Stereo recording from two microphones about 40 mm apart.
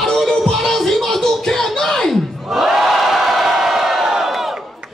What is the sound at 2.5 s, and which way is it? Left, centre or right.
Crowd, centre.